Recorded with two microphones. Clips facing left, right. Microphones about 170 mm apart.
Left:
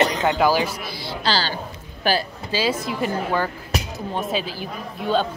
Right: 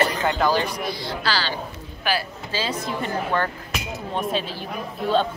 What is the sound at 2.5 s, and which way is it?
Speech, 15° left (ahead or behind).